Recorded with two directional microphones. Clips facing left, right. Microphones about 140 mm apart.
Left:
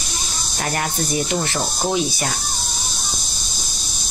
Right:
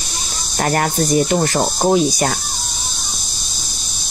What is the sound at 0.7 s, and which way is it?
Speech, 45° right (ahead or behind).